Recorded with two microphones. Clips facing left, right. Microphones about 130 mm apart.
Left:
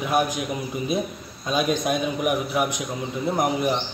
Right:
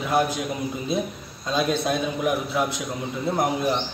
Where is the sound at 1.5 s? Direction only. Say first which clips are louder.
Left 1 dB; 15° left (ahead or behind).